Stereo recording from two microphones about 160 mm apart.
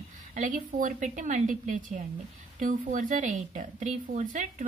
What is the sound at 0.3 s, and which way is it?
A woman's voice, 55° right (ahead or behind).